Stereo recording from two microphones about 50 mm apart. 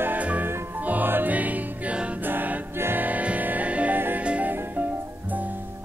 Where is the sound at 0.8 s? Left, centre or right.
Right.